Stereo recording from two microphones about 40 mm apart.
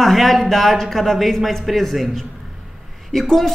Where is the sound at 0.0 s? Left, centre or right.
Centre.